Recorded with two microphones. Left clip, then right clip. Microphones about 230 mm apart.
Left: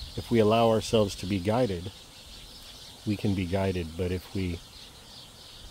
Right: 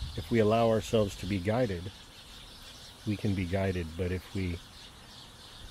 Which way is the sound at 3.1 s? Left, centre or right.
Left.